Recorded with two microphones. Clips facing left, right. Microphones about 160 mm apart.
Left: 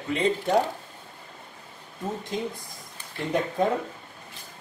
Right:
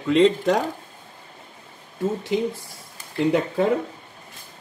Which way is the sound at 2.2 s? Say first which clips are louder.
Right 7 dB; 80° right.